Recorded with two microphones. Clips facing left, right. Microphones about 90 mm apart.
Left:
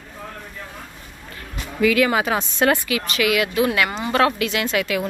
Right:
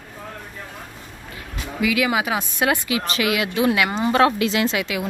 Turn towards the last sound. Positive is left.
turn(degrees=-20)  # may be behind; listen again after turning